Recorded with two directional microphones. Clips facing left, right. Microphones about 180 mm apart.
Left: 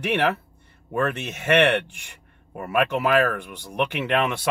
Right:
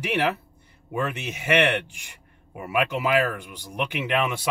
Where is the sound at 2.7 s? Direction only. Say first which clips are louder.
Left 2 dB; 60° left (ahead or behind).